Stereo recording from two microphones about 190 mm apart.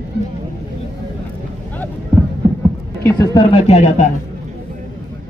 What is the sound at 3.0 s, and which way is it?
Speech, 20° left (ahead or behind).